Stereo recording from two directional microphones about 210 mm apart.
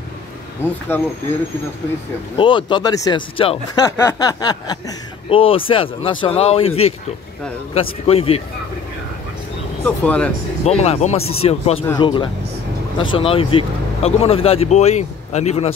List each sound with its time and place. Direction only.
2.3 s speech: 25° left (ahead or behind)
9.8 s speech: 5° left (ahead or behind)
10.6 s speech: 30° left (ahead or behind)